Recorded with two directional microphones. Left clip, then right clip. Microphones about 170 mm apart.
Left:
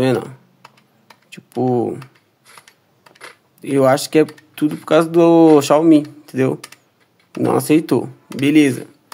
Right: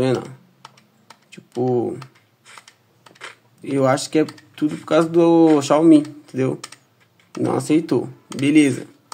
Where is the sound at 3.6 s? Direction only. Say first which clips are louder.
Left 4 dB; 20° left (ahead or behind).